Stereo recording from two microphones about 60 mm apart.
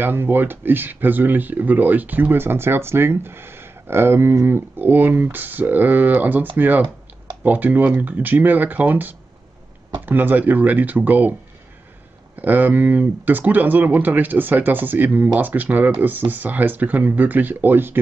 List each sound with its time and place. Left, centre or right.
0.0 s speech: right
12.4 s speech: right